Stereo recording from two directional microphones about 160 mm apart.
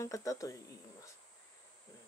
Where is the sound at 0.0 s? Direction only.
20° left (ahead or behind).